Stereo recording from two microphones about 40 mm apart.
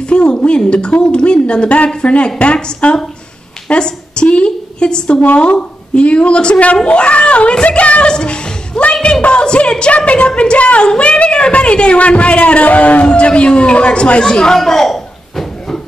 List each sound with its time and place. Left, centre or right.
0.1 s a woman's voice: left
5.2 s a child's voice: left
8.1 s a sound: left
9.2 s speech: left
13.0 s speech: left
14.6 s a sound: centre